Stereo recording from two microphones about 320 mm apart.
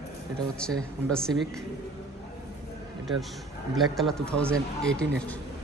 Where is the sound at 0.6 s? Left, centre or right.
Centre.